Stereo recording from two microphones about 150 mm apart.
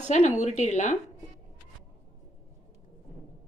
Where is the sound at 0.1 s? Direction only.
50° left (ahead or behind).